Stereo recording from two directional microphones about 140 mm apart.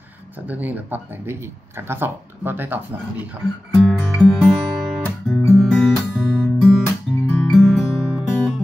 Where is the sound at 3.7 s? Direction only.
Centre (ahead or behind).